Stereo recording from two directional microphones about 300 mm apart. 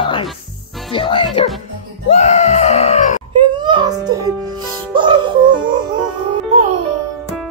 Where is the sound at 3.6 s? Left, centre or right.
Centre.